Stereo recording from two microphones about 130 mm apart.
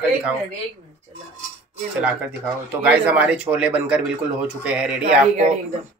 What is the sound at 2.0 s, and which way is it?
Speech, 10° right (ahead or behind).